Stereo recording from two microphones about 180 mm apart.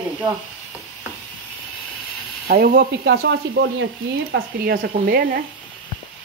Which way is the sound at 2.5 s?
60° right (ahead or behind).